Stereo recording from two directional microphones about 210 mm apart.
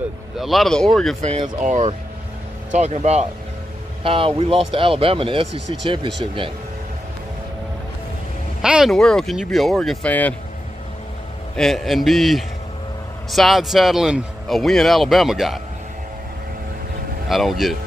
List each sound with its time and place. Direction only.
0.4 s speech: centre (ahead or behind)
1.2 s speech: 30° right (ahead or behind)
8.6 s speech: centre (ahead or behind)
11.5 s speech: centre (ahead or behind)
17.3 s speech: centre (ahead or behind)